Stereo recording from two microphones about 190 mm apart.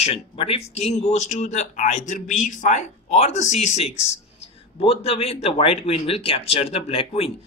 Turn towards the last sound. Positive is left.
turn(degrees=30)  # may be behind; listen again after turning